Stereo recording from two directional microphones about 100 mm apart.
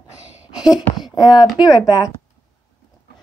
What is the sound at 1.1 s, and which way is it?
Speech, 40° left (ahead or behind).